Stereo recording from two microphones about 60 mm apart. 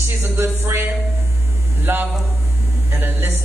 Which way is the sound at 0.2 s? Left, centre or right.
Right.